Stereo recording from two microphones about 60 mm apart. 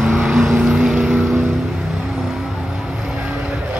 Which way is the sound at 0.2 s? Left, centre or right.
Centre.